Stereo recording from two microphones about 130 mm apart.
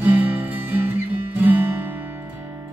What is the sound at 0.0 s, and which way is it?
Music, 15° right (ahead or behind).